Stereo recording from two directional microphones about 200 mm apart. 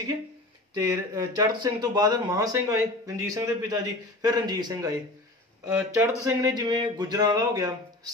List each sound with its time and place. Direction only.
0.7 s speech: 20° right (ahead or behind)